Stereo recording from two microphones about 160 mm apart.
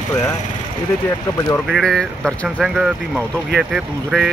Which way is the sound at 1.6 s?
Centre (ahead or behind).